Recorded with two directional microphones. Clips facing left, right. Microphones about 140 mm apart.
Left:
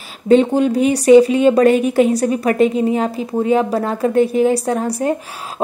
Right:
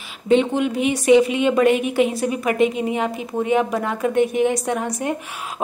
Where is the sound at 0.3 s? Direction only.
35° left (ahead or behind).